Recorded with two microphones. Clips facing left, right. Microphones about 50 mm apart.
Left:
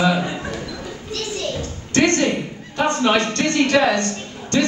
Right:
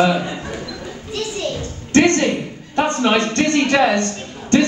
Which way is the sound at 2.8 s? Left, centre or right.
Right.